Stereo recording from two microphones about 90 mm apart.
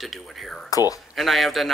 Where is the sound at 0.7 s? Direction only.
40° left (ahead or behind).